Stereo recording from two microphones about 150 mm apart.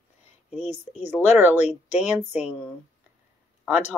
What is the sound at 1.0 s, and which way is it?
A woman's voice, 10° right (ahead or behind).